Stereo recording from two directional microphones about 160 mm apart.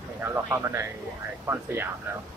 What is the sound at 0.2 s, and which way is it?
A man's voice, 15° right (ahead or behind).